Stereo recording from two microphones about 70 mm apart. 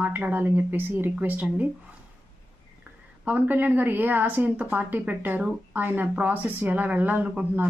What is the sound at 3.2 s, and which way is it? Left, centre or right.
Speech, right.